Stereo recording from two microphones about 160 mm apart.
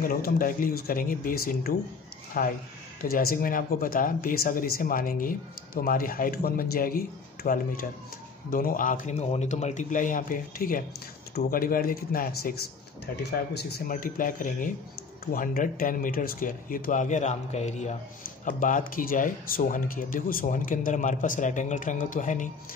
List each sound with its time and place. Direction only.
0.0 s speech: 60° left (ahead or behind)